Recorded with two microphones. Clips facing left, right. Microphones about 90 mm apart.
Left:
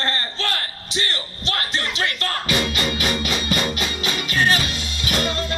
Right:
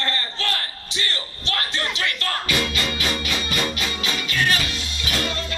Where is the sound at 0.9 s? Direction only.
20° left (ahead or behind).